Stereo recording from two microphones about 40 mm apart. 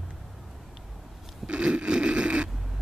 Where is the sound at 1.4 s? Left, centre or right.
Right.